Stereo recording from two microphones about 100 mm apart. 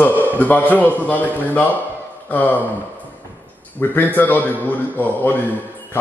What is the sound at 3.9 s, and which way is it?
A man's voice, 20° left (ahead or behind).